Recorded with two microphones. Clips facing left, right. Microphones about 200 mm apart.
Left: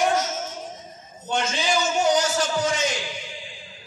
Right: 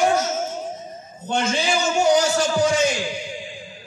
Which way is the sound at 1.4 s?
10° right (ahead or behind).